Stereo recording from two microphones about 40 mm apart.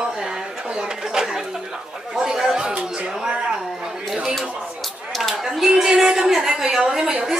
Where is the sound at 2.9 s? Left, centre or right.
Centre.